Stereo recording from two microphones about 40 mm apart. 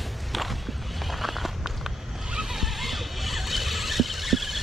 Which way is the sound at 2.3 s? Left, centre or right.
Centre.